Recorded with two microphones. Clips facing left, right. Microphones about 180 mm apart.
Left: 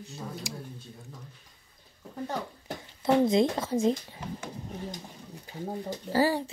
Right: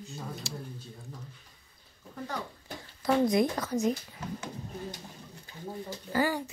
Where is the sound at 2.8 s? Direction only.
25° left (ahead or behind).